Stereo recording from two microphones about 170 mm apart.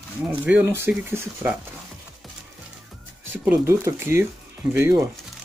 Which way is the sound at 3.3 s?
15° right (ahead or behind).